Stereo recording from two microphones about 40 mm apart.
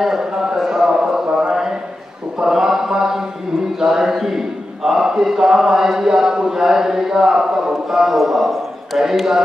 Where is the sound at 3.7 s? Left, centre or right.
Centre.